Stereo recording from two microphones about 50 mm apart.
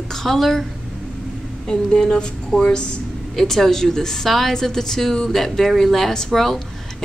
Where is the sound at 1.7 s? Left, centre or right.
Centre.